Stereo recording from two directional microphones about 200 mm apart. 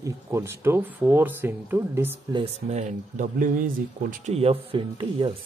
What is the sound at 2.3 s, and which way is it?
A man's voice, 30° right (ahead or behind).